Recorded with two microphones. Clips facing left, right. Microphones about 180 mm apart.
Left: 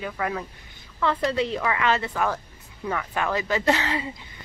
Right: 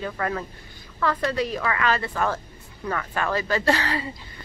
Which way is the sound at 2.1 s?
10° left (ahead or behind).